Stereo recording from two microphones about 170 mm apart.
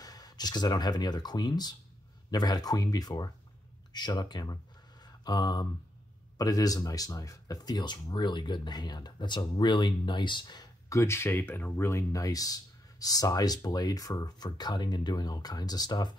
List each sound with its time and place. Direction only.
0.0 s speech: 20° left (ahead or behind)
5.0 s mantra: 25° left (ahead or behind)
6.3 s speech: 20° left (ahead or behind)